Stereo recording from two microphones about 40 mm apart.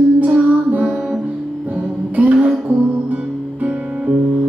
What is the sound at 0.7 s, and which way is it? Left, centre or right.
Music, right.